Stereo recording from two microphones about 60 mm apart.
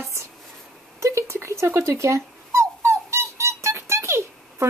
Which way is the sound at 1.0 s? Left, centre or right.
Right.